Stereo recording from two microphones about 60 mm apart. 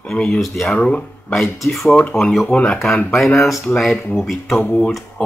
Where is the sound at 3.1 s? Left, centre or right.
Centre.